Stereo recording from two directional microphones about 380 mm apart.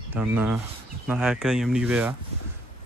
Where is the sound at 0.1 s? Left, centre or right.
Centre.